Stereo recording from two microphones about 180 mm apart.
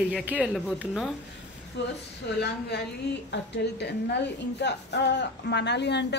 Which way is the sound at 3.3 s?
75° left (ahead or behind).